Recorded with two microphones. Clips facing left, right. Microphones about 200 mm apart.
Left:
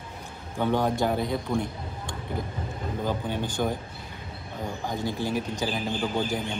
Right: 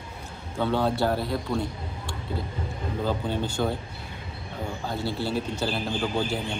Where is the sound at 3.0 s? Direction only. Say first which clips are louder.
Right 2 dB; 15° left (ahead or behind).